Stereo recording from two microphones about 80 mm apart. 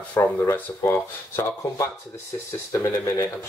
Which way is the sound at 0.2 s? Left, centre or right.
Left.